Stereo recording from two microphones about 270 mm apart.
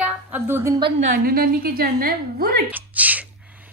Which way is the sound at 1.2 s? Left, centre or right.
Right.